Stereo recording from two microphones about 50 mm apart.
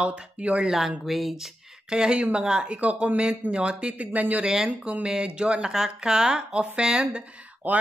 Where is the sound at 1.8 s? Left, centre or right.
Centre; by 4.4 s right.